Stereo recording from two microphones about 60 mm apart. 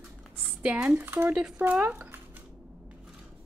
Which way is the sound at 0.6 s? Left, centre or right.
Centre.